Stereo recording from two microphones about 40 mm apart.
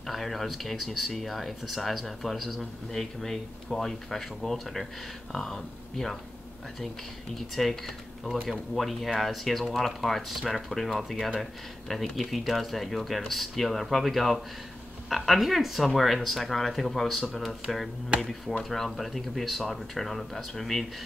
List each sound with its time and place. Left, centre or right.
0.0 s speech: centre
7.3 s speech: centre
18.1 s speech: right
18.6 s speech: centre